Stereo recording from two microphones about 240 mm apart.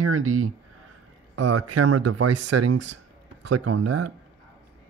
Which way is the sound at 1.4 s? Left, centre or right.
Right.